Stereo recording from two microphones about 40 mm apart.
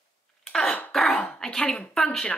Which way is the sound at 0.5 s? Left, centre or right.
Centre.